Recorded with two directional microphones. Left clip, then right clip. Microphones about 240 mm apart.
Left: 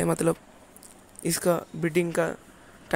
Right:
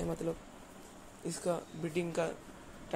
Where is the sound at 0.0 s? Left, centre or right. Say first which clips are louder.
Left 12 dB; left.